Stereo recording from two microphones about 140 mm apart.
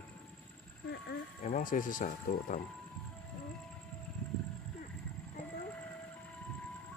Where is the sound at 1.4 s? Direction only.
65° left (ahead or behind).